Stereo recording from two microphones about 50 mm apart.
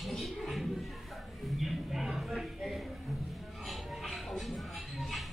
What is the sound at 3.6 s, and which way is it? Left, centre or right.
Music, centre.